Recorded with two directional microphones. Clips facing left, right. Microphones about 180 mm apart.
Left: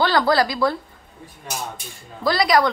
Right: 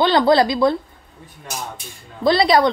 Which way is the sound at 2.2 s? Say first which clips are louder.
Right 3 dB; 25° right (ahead or behind).